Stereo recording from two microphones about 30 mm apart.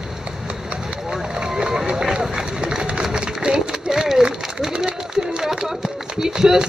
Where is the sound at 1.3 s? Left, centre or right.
Right.